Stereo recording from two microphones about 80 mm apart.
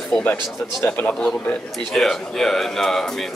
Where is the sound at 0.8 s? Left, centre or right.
Left.